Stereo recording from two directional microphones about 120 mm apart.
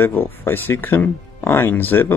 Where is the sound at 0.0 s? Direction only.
20° left (ahead or behind).